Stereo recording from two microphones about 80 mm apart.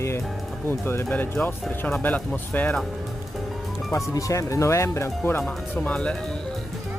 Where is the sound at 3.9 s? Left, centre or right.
Left.